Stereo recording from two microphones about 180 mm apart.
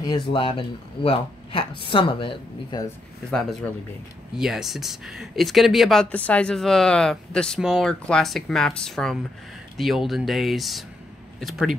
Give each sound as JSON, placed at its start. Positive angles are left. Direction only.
{"t": 0.0, "sound": "speech", "side_deg": 25}
{"t": 4.4, "sound": "speech", "side_deg": 0}